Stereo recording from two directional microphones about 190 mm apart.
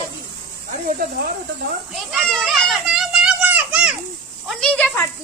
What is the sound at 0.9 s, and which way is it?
Speech, 50° right (ahead or behind).